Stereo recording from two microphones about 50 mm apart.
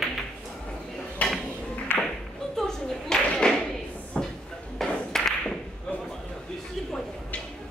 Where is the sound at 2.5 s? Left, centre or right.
Centre.